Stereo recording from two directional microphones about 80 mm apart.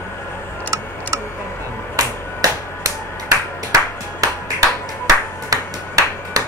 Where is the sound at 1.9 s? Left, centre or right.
Right.